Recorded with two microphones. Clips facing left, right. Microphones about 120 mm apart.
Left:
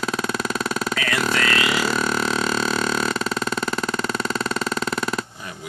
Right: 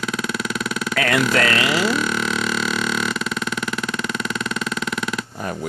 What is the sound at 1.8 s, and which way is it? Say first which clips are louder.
Burping: right 1 dB; 40° left (ahead or behind).